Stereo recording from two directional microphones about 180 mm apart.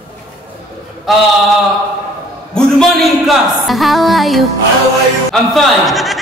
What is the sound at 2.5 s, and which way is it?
A man's voice, centre (ahead or behind).